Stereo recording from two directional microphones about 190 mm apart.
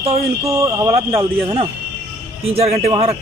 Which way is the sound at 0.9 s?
30° right (ahead or behind).